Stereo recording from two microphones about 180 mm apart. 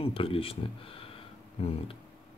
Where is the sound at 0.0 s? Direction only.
30° left (ahead or behind).